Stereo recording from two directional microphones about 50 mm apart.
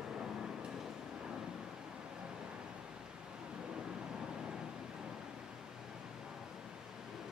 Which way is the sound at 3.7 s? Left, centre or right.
Centre.